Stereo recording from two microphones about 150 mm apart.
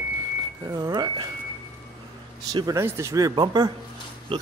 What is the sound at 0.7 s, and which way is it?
Speech, 25° right (ahead or behind).